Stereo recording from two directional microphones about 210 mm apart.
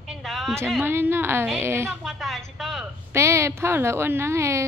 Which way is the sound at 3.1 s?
15° right (ahead or behind).